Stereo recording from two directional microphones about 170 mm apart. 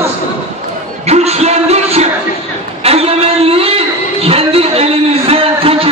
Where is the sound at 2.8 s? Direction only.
35° right (ahead or behind).